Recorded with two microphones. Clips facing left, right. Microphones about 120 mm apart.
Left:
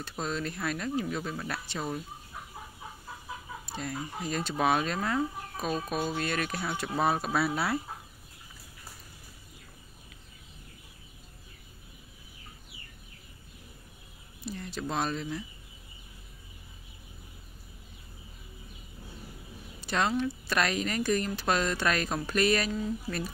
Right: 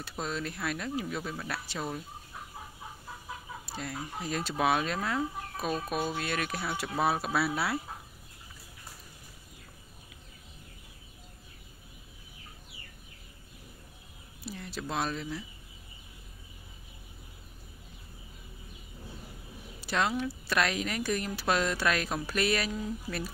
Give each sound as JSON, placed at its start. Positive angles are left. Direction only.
{"t": 0.0, "sound": "speech", "side_deg": 0}
{"t": 3.6, "sound": "speech", "side_deg": 0}
{"t": 14.4, "sound": "speech", "side_deg": -5}
{"t": 19.8, "sound": "speech", "side_deg": -5}